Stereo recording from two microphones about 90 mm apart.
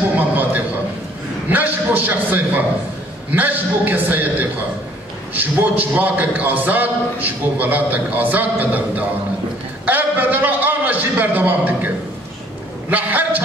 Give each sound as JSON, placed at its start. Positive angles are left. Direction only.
{"t": 1.5, "sound": "a man's voice", "side_deg": -20}
{"t": 12.9, "sound": "a man's voice", "side_deg": -20}